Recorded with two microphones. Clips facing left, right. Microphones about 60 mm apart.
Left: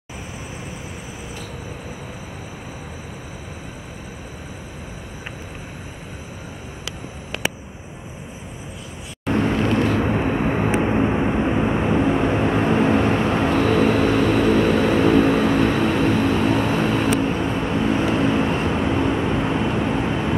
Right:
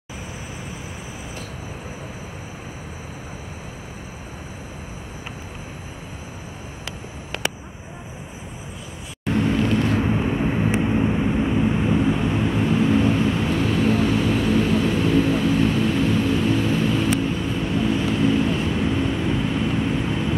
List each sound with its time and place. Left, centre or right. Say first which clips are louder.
9.3 s vehicle: left 1 dB; left
10.0 s vehicle: left 2 dB; left